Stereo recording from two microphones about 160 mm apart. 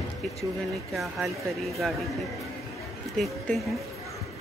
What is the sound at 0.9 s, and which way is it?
Speech, centre (ahead or behind).